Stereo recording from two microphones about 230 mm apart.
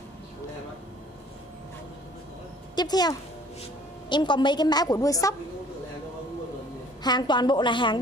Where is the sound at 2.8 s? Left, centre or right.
Centre.